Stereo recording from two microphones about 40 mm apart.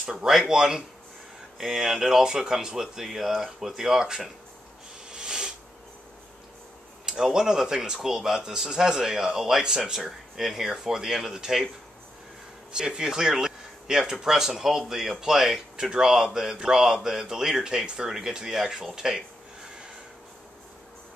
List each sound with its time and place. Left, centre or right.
0.0 s speech: centre
5.1 s a sound: right
7.1 s speech: centre
9.9 s speech: centre
12.7 s speech: centre